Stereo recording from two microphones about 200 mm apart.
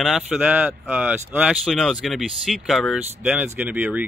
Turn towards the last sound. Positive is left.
turn(degrees=-5)  # may be behind; listen again after turning